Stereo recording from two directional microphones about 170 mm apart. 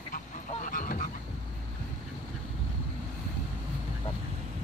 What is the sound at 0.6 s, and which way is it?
Goose, 50° left (ahead or behind).